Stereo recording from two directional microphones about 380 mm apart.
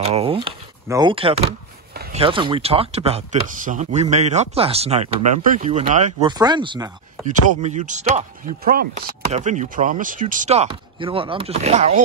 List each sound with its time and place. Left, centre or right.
0.0 s speech: centre